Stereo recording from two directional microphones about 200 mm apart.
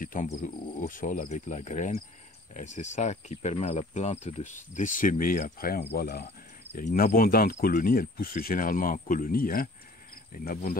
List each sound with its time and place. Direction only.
0.0 s cricket: 45° left (ahead or behind)
0.4 s speech: 45° left (ahead or behind)
6.8 s speech: 40° left (ahead or behind)